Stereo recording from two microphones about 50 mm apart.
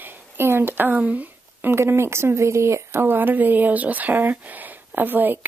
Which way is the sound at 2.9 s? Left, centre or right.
Right.